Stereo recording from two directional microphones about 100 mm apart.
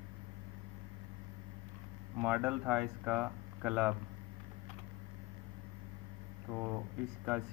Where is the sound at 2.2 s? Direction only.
5° right (ahead or behind).